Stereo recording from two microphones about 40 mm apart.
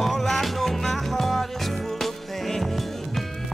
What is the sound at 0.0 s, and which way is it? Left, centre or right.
Music, centre.